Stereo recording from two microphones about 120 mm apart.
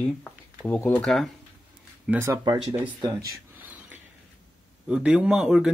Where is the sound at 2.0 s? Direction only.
20° right (ahead or behind).